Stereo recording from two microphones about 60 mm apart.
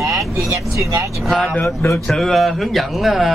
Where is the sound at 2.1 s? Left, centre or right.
Centre.